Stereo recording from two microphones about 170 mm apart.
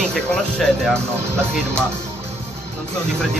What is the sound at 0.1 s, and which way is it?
Speech, centre (ahead or behind).